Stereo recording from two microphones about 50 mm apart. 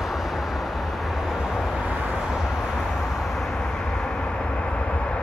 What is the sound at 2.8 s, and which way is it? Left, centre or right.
Vehicle, centre.